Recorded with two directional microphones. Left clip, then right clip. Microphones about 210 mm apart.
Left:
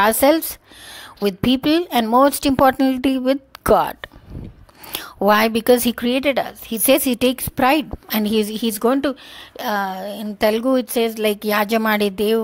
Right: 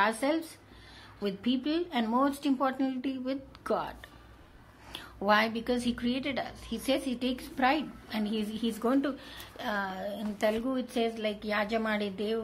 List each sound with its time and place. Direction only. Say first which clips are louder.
0.0 s a woman's voice: left 14 dB; 50° left (ahead or behind)